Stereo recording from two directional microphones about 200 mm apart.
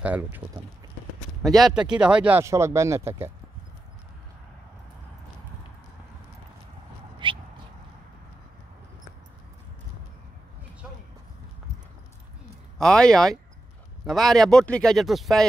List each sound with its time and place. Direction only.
0.0 s speech: 5° right (ahead or behind)
1.4 s speech: centre (ahead or behind)
7.2 s a sound: 25° right (ahead or behind)
12.7 s speech: 5° left (ahead or behind)